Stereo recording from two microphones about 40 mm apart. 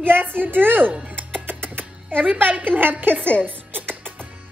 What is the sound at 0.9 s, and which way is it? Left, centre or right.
Music, right.